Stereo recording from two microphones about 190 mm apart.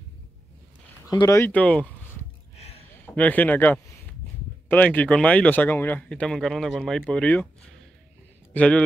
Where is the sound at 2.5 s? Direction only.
35° left (ahead or behind).